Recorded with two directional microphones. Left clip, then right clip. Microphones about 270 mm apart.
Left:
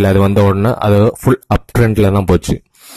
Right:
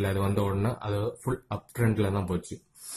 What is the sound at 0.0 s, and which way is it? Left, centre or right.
Speech, left.